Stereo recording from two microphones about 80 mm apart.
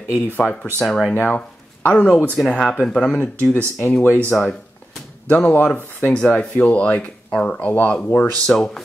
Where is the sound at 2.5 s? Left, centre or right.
Centre.